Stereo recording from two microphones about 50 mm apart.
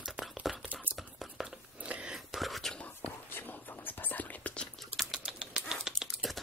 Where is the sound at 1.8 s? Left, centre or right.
Right.